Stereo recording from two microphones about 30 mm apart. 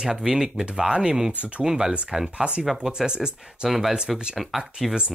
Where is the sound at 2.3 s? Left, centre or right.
Right.